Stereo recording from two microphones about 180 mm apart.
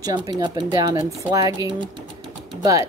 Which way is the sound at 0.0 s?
20° right (ahead or behind).